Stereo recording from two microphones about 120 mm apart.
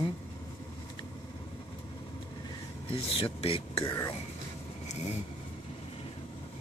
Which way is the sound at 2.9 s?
50° left (ahead or behind).